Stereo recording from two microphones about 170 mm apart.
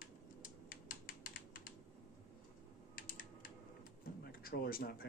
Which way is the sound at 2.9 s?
55° left (ahead or behind).